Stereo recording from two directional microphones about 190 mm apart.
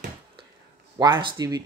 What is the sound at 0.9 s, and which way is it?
Speech, 25° right (ahead or behind).